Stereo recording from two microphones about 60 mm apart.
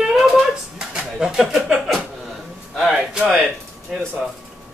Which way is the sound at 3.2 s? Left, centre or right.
Centre.